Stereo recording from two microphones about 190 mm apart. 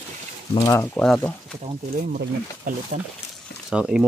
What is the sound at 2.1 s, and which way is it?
Speech, 50° right (ahead or behind).